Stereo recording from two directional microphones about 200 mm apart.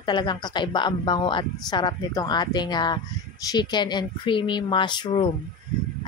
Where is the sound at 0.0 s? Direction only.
25° left (ahead or behind).